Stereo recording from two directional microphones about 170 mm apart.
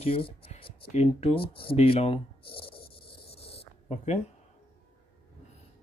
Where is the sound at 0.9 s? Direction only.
40° left (ahead or behind).